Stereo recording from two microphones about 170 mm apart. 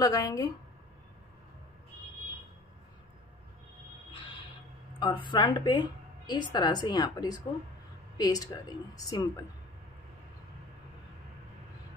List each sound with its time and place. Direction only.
0.0 s a woman's voice: 20° left (ahead or behind)
5.0 s a woman's voice: 30° left (ahead or behind)